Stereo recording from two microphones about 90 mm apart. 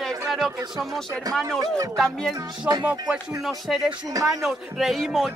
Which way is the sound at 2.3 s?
55° right (ahead or behind).